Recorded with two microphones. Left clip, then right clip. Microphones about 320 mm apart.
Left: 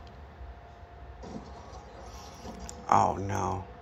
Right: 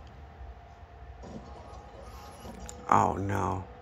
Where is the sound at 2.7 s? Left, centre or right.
Centre.